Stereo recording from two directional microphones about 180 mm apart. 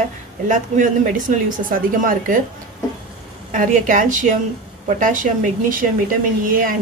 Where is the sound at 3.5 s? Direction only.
45° right (ahead or behind).